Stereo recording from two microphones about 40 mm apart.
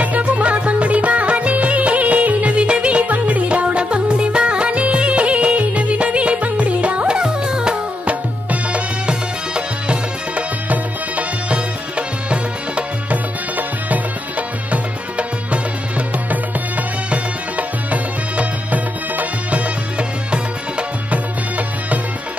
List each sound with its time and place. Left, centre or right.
0.0 s music: right
7.2 s music: centre
8.1 s music: right
10.7 s music: right
13.6 s music: right
20.0 s music: right
21.1 s music: right